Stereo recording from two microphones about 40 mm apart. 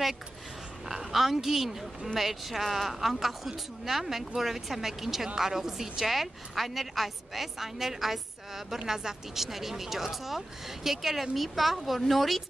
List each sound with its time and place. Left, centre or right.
0.8 s a woman's voice: centre